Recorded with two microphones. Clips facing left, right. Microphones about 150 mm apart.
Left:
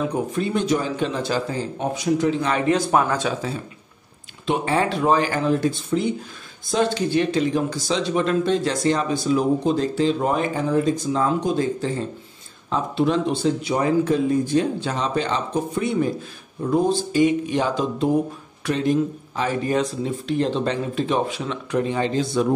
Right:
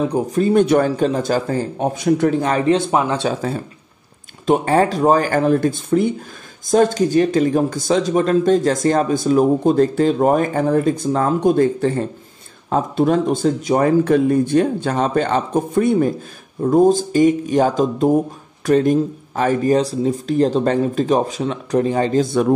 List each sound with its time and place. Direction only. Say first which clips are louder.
0.0 s speech: right 6 dB; 35° right (ahead or behind)
0.7 s speech: right 7 dB; 55° right (ahead or behind); by 3.3 s 20° right (ahead or behind)
3.3 s speech: right 5 dB; 50° right (ahead or behind)
12.6 s speech: right 4 dB; 45° right (ahead or behind)
19.7 s speech: right 6 dB; 35° right (ahead or behind); by 22.5 s 50° right (ahead or behind)